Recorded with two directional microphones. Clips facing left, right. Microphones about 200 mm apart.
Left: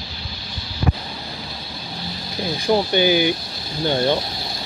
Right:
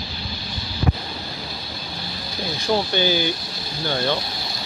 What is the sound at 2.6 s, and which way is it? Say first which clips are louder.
Speech: left 4 dB; 15° left (ahead or behind).